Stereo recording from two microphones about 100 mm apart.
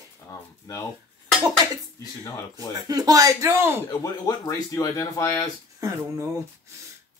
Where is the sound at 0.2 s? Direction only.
25° left (ahead or behind).